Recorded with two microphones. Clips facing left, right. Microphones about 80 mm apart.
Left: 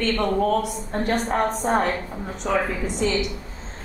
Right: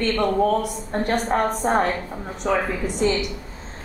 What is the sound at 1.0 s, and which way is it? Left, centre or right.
A woman's voice, centre.